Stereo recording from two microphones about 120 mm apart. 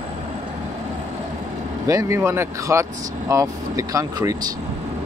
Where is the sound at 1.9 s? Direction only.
25° right (ahead or behind).